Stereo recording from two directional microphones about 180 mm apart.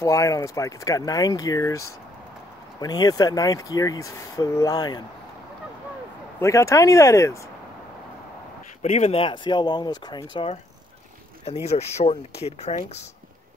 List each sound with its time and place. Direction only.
0.0 s speech: 20° left (ahead or behind)
2.8 s speech: 20° left (ahead or behind)
6.4 s speech: 15° left (ahead or behind)
8.8 s speech: 35° left (ahead or behind)
11.6 s speech: 35° left (ahead or behind)